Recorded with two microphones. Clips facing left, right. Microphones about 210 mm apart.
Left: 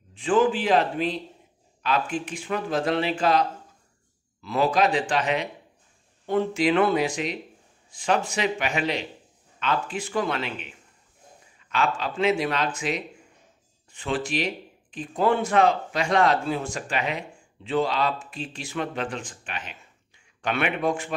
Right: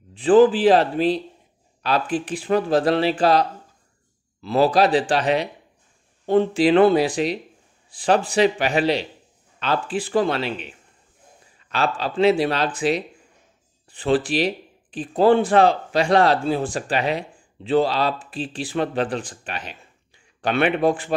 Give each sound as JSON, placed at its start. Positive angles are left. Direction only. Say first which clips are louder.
{"t": 0.1, "sound": "speech", "louder": "right 7 dB", "side_deg": -35}
{"t": 11.7, "sound": "speech", "louder": "right 3 dB", "side_deg": -35}